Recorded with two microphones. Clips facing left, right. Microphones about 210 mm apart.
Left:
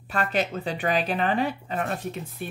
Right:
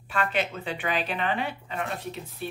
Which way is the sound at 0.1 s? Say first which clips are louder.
Left 2 dB; 40° left (ahead or behind).